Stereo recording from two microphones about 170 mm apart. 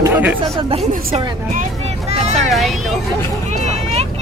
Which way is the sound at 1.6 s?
40° right (ahead or behind).